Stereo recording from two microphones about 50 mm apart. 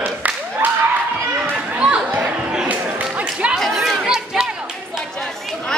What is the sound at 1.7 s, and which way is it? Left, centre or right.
Speech, right.